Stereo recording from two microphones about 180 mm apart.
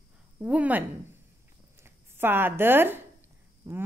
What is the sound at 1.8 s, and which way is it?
A man's voice, 10° right (ahead or behind).